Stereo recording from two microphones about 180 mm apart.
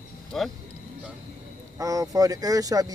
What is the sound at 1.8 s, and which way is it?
Speech, 20° right (ahead or behind).